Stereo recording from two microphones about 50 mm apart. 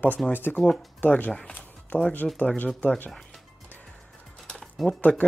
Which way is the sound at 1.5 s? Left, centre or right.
Left.